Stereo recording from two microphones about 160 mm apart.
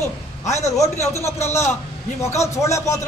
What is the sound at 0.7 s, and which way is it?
A man's voice, 20° left (ahead or behind).